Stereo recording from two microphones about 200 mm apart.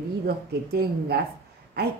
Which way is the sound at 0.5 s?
50° right (ahead or behind).